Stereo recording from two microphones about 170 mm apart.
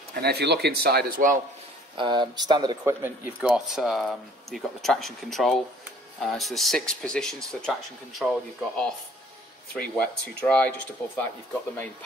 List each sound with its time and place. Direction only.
0.1 s speech: 70° right (ahead or behind); by 1.4 s 55° right (ahead or behind)
2.0 s speech: 25° right (ahead or behind)
3.4 s speech: 5° right (ahead or behind)